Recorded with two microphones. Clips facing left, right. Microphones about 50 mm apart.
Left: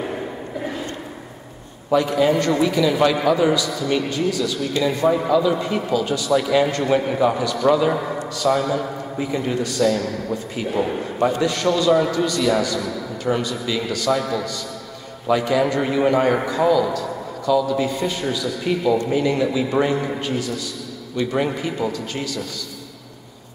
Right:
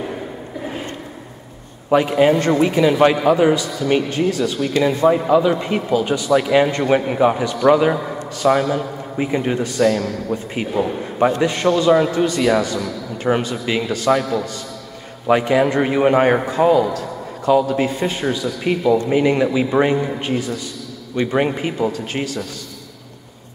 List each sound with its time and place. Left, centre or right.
1.9 s a man's voice: right
15.2 s a man's voice: right